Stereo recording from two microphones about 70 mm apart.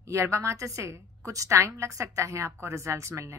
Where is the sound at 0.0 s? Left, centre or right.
Right.